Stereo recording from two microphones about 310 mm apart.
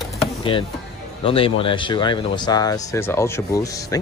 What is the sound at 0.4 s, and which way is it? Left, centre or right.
Speech, centre.